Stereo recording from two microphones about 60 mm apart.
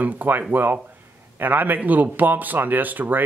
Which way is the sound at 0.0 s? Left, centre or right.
Right.